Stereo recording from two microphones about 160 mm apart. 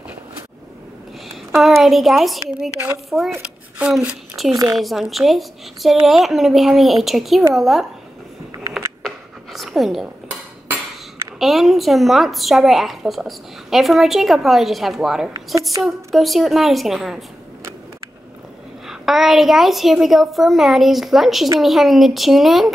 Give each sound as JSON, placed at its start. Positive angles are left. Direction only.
{"t": 1.5, "sound": "a woman's voice", "side_deg": 0}
{"t": 3.3, "sound": "a sound", "side_deg": -15}
{"t": 3.8, "sound": "a woman's voice", "side_deg": -5}
{"t": 8.7, "sound": "a sound", "side_deg": 0}
{"t": 11.3, "sound": "a woman's voice", "side_deg": 0}
{"t": 18.9, "sound": "a woman's voice", "side_deg": 0}